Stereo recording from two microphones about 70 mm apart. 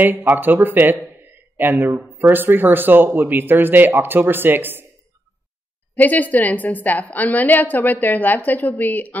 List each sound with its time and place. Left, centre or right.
0.0 s speech: right
5.9 s a woman's voice: left